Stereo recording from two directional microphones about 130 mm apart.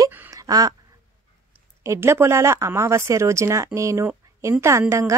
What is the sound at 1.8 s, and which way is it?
A woman's voice, 20° right (ahead or behind).